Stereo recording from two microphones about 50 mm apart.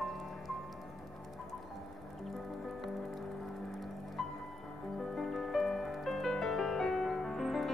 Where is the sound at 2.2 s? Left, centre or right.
Centre.